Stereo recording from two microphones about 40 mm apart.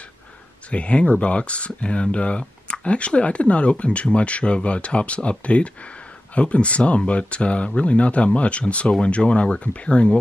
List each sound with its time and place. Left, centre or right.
0.7 s speech: left